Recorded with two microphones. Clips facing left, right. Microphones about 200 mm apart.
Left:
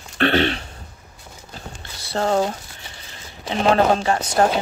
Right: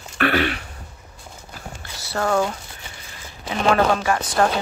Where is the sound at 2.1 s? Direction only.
30° left (ahead or behind).